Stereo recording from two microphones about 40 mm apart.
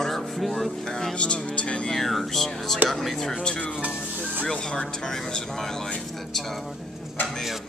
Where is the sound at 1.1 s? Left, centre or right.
Left.